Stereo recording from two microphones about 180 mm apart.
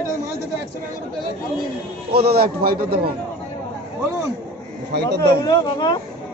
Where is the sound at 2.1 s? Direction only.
60° right (ahead or behind).